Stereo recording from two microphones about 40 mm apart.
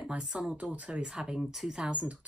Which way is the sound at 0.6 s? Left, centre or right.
Right.